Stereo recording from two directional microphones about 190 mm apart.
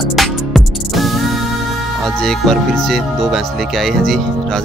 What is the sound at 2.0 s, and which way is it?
Speech, centre (ahead or behind).